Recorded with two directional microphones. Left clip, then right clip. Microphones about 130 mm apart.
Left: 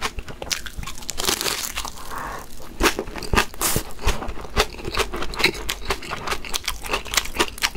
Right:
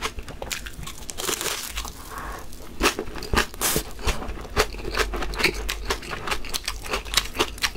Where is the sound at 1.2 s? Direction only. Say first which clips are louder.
Left 5 dB; 55° left (ahead or behind).